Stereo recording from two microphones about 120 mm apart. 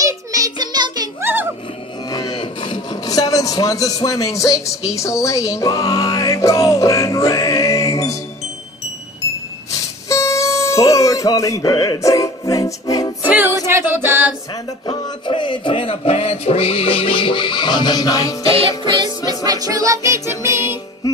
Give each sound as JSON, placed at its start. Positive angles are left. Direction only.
{"t": 0.0, "sound": "child singing", "side_deg": -30}
{"t": 1.2, "sound": "a sound", "side_deg": -15}
{"t": 2.0, "sound": "speech", "side_deg": 30}
{"t": 9.2, "sound": "music", "side_deg": 25}
{"t": 13.7, "sound": "a capella", "side_deg": -20}
{"t": 14.5, "sound": "speech", "side_deg": 40}
{"t": 18.9, "sound": "music", "side_deg": -35}